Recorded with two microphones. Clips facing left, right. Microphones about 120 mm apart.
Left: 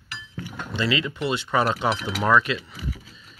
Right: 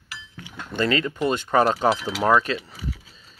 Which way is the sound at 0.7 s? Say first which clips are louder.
Right 3 dB; 45° right (ahead or behind).